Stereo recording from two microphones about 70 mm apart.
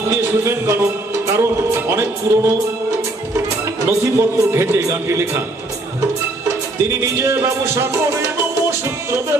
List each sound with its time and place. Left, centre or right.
0.1 s speech: right
1.3 s music: right
4.0 s a man's voice: right
6.8 s music: right